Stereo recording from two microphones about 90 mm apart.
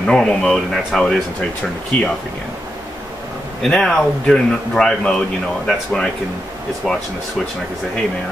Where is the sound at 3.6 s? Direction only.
5° left (ahead or behind).